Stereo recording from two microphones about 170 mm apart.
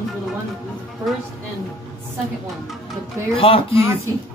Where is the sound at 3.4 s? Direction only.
30° left (ahead or behind).